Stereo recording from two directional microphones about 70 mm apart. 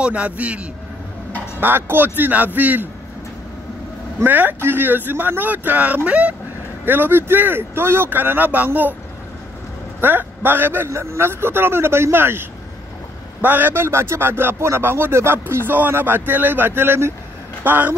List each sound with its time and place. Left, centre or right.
0.0 s a man's voice: centre
1.6 s speech: right
4.2 s speech: right
6.8 s speech: right
9.9 s a man's voice: right